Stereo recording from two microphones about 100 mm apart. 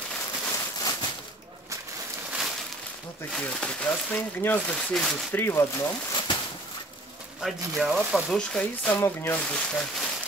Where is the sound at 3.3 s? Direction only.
10° left (ahead or behind); by 5.9 s 30° left (ahead or behind).